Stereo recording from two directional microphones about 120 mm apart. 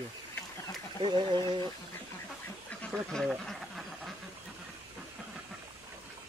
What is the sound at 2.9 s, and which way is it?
Duck, centre (ahead or behind).